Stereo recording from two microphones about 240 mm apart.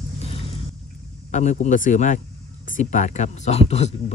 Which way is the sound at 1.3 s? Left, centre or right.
Left.